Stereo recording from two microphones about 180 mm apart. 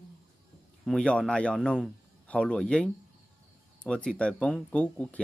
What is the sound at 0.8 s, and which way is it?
A man's voice, 5° left (ahead or behind).